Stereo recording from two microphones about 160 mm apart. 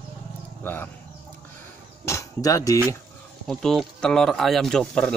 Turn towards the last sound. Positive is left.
turn(degrees=5)  # may be behind; listen again after turning